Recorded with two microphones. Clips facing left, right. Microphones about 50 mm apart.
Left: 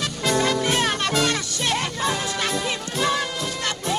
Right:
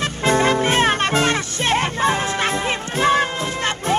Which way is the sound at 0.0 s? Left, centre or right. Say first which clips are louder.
Right 5 dB; right.